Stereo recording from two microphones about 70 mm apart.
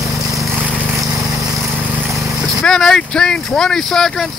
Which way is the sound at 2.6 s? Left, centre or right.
Centre.